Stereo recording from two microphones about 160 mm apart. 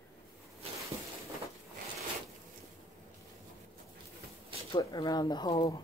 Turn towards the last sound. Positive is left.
turn(degrees=25)  # may be behind; listen again after turning